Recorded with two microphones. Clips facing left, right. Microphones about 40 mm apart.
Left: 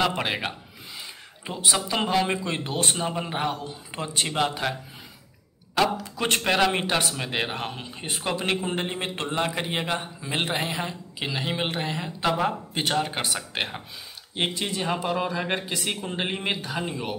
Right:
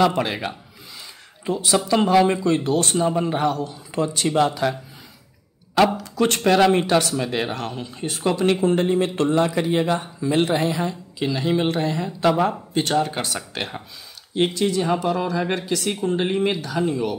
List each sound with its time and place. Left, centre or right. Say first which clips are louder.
0.0 s a sound: right 5 dB; left
1.9 s a man's voice: right 9 dB; left
6.1 s a man's voice: right 5 dB; left
12.3 s a man's voice: right 5 dB; centre; by 17.1 s left